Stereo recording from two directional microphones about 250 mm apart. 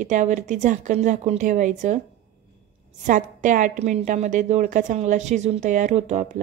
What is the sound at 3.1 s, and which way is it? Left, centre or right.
A woman's voice, right.